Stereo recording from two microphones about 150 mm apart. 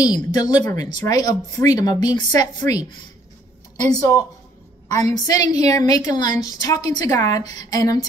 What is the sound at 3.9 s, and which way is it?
A woman's voice, 25° left (ahead or behind).